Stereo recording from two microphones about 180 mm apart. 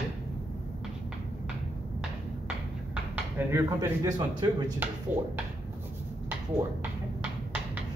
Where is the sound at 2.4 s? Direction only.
10° right (ahead or behind).